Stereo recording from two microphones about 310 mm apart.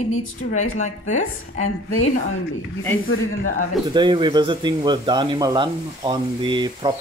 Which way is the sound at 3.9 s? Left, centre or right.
Centre.